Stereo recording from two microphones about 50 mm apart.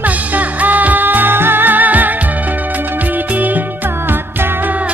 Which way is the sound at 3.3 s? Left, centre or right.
Right.